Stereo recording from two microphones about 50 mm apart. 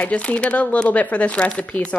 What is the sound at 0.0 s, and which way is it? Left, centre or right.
Speech, left.